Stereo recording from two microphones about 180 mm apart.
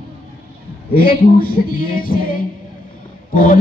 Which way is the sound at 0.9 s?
55° left (ahead or behind).